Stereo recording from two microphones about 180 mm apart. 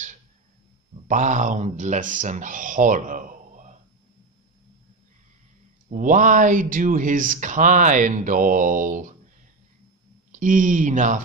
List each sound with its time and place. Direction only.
1.0 s speech: 45° right (ahead or behind)
5.9 s speech: 50° right (ahead or behind)
10.3 s speech: 45° right (ahead or behind)